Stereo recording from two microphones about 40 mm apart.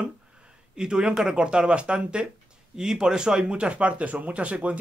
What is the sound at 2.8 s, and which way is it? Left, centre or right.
Speech, centre.